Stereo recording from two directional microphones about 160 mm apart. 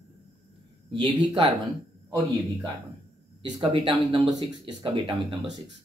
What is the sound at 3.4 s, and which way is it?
Speech, 30° right (ahead or behind).